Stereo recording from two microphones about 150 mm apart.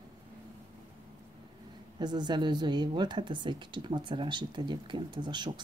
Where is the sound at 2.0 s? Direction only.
30° right (ahead or behind).